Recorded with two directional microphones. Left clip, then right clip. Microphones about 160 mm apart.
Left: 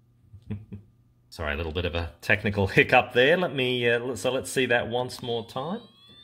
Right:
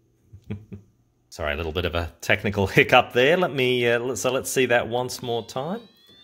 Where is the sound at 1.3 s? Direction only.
25° right (ahead or behind).